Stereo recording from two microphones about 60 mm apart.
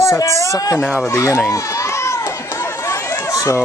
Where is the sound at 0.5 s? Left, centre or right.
Left.